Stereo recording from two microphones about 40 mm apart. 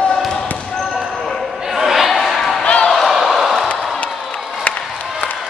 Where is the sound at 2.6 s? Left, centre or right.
Left.